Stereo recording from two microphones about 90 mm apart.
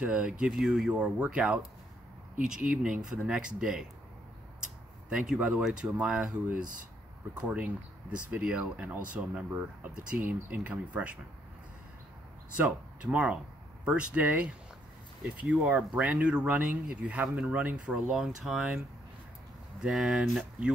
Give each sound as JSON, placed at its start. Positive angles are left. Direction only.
{"t": 0.0, "sound": "speech", "side_deg": -10}
{"t": 5.1, "sound": "speech", "side_deg": -10}
{"t": 7.4, "sound": "speech", "side_deg": -15}
{"t": 12.5, "sound": "speech", "side_deg": -15}